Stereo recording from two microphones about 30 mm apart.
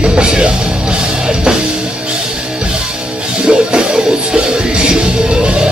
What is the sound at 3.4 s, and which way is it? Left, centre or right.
Music, right.